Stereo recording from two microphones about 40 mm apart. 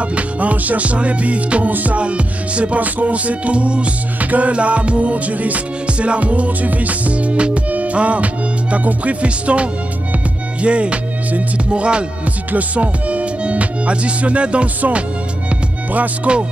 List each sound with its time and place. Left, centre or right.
0.0 s music: right
1.7 s music: right
2.0 s music: right
12.5 s speech: right
14.8 s music: right
16.3 s music: right